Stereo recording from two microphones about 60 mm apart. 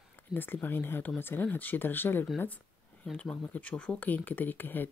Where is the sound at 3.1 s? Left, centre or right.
Left.